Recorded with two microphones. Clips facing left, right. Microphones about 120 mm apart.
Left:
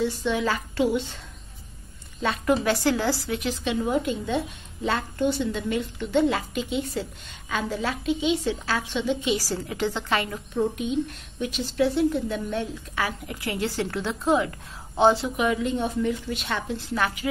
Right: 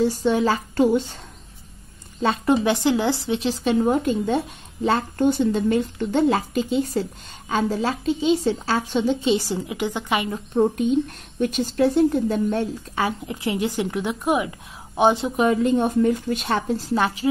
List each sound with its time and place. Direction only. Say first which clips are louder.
0.0 s speech: right 5 dB; 40° right (ahead or behind)
2.2 s speech: right 4 dB; 30° right (ahead or behind)
9.3 s speech: right 5 dB; 20° right (ahead or behind)
10.5 s speech: right 6 dB; 45° right (ahead or behind)
12.9 s speech: right 3 dB; 25° right (ahead or behind)
15.3 s speech: right 6 dB; 40° right (ahead or behind)